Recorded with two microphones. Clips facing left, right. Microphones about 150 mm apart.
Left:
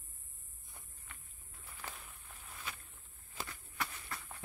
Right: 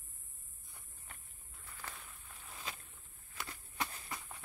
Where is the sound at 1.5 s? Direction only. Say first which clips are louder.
Left 1 dB; 5° left (ahead or behind).